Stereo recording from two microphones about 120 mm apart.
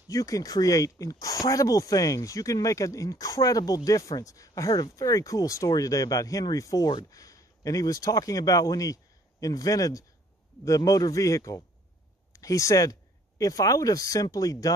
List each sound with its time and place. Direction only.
0.1 s speech: 30° left (ahead or behind)